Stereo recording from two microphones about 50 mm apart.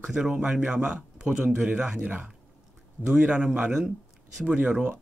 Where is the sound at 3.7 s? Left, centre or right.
Centre.